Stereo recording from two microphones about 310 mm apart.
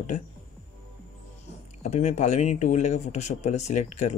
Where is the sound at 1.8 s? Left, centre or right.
Left.